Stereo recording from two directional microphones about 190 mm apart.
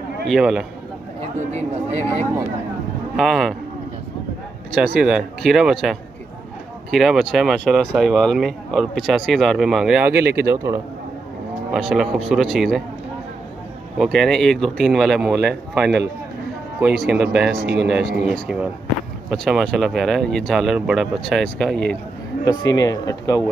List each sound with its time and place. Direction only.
0.3 s speech: centre (ahead or behind)
3.2 s speech: centre (ahead or behind)
4.7 s speech: 5° right (ahead or behind)
10.1 s speech: 55° right (ahead or behind)
10.5 s a man's voice: 15° right (ahead or behind)
11.7 s speech: centre (ahead or behind)
13.9 s speech: centre (ahead or behind)
17.1 s speech: 5° right (ahead or behind)
22.4 s speech: 20° left (ahead or behind)